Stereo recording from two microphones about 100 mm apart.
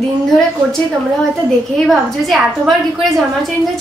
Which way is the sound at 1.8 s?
Centre (ahead or behind).